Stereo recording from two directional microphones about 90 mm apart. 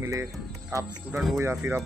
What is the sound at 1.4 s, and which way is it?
Speech, 25° right (ahead or behind).